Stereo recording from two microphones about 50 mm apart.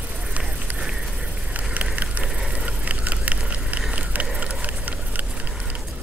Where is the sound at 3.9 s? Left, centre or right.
Right.